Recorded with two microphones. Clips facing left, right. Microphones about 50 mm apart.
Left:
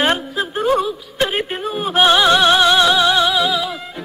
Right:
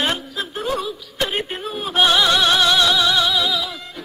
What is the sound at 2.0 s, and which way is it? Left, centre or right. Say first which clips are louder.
Music: left 4 dB; centre.